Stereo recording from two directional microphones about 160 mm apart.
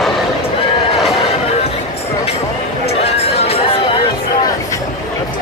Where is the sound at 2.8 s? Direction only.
40° left (ahead or behind).